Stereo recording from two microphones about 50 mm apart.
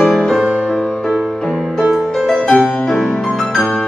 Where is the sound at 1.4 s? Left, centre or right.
Centre.